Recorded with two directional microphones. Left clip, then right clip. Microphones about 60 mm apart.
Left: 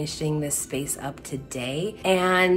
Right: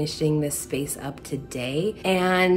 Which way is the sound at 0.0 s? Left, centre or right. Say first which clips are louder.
Right 4 dB; right.